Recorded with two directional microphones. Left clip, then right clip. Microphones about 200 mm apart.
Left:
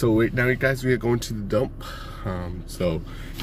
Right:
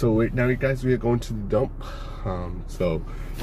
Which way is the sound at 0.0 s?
10° left (ahead or behind).